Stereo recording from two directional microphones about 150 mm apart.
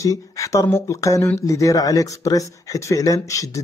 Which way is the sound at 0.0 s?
20° left (ahead or behind).